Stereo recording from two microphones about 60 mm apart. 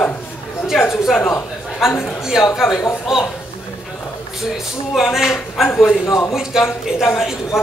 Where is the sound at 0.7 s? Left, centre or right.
Left.